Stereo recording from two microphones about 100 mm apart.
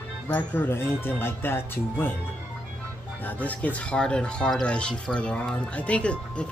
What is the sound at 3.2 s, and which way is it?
Speech, 15° left (ahead or behind).